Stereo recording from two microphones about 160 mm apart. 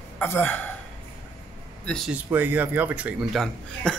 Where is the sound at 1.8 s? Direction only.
5° left (ahead or behind).